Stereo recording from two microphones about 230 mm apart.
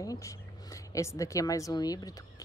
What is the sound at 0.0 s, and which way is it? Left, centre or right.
A woman's voice, centre.